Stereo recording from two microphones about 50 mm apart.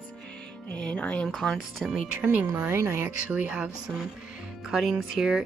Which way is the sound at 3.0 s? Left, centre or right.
Right.